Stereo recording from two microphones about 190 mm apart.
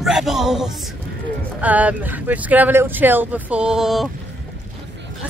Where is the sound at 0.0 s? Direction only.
Centre (ahead or behind).